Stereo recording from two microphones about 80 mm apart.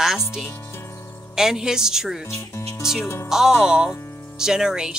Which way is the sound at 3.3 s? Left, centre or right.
Centre.